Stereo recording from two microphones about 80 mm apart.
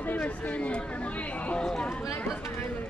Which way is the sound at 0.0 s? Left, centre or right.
Left.